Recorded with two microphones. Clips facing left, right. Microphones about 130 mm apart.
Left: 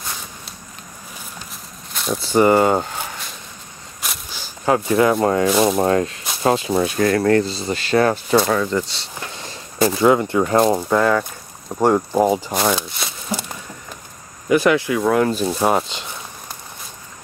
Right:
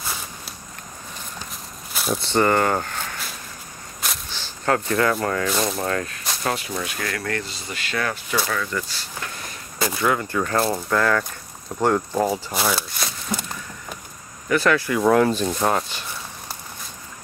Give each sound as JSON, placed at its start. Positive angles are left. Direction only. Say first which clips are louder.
{"t": 0.0, "sound": "walk", "louder": "even", "side_deg": -5}
{"t": 2.0, "sound": "speech", "louder": "left 4 dB", "side_deg": 0}
{"t": 4.0, "sound": "a sound", "louder": "even", "side_deg": 0}
{"t": 4.6, "sound": "speech", "louder": "left 5 dB", "side_deg": 15}
{"t": 8.7, "sound": "speech", "louder": "left 6 dB", "side_deg": 25}
{"t": 12.5, "sound": "speech", "louder": "left 4 dB", "side_deg": 0}
{"t": 14.5, "sound": "speech", "louder": "left 4 dB", "side_deg": 15}
{"t": 15.0, "sound": "speech", "louder": "even", "side_deg": 0}